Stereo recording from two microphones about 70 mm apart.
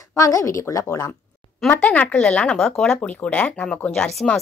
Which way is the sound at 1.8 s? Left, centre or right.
Centre.